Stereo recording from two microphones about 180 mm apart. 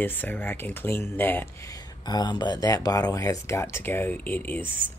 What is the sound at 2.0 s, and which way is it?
Speech, 25° left (ahead or behind).